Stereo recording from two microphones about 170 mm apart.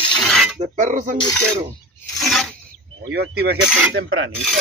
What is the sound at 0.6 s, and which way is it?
Speech, 50° right (ahead or behind).